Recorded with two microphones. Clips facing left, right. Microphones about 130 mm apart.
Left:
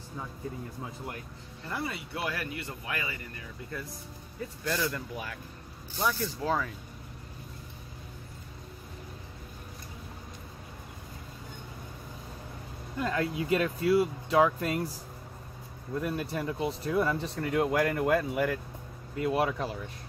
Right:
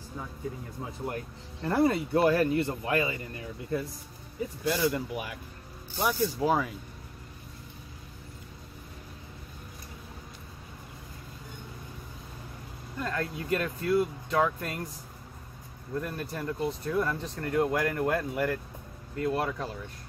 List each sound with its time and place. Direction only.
1.6 s speech: 45° right (ahead or behind); by 3.8 s 25° right (ahead or behind)
4.4 s speech: 15° right (ahead or behind)
13.0 s speech: 10° left (ahead or behind)
15.9 s speech: 10° left (ahead or behind)